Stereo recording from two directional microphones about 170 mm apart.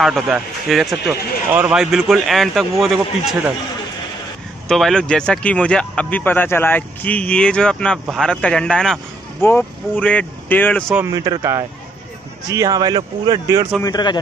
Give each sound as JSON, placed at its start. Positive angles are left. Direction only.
{"t": 0.0, "sound": "speech", "side_deg": 0}
{"t": 4.6, "sound": "speech", "side_deg": 0}
{"t": 11.0, "sound": "a man's voice", "side_deg": -20}
{"t": 13.8, "sound": "a man's voice", "side_deg": 25}